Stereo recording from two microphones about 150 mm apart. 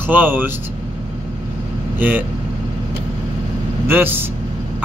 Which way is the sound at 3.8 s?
15° right (ahead or behind).